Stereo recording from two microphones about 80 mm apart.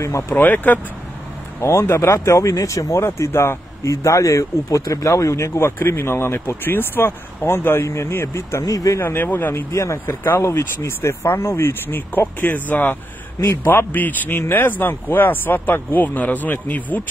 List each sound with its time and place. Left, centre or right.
0.0 s speech: left
0.4 s speech: left
1.6 s a man's voice: left
9.0 s speech: left